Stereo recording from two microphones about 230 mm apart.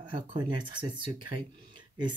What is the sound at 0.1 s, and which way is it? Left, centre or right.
Speech, right.